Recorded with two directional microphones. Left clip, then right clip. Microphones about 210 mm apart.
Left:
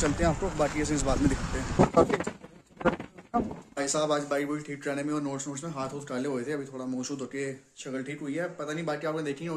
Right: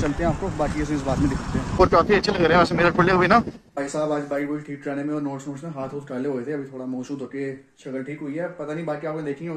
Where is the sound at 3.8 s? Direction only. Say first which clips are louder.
Right 3 dB; centre (ahead or behind).